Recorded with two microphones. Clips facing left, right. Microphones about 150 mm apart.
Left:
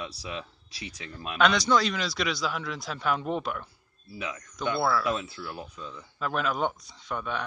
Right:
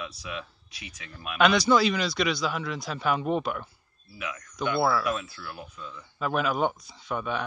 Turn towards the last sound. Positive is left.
turn(degrees=-5)  # may be behind; listen again after turning